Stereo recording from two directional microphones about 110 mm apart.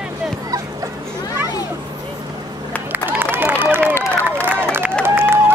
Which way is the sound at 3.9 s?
20° left (ahead or behind).